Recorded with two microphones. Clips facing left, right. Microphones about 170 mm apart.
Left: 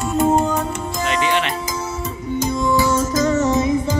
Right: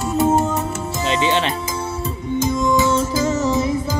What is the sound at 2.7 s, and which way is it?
Music, 25° right (ahead or behind).